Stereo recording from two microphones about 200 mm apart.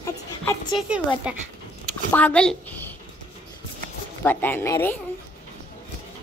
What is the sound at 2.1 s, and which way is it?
Speech, 5° left (ahead or behind).